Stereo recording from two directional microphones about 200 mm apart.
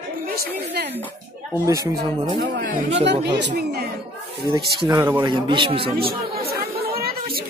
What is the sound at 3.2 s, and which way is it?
Speech, 60° right (ahead or behind).